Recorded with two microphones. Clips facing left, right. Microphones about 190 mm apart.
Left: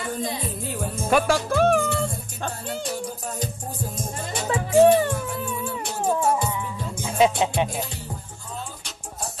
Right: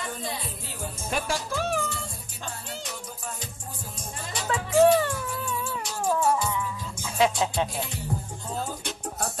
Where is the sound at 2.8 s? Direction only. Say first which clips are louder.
Left 8 dB; 35° left (ahead or behind).